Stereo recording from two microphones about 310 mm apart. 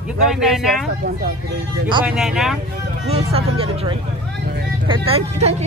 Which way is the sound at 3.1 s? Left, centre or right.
Centre.